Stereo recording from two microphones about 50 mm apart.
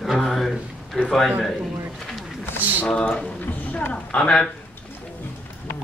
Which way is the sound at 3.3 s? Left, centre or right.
Left.